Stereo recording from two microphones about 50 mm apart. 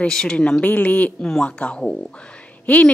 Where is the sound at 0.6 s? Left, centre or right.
Left.